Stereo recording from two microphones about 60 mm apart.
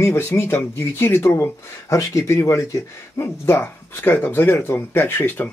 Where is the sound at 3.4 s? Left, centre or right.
Left.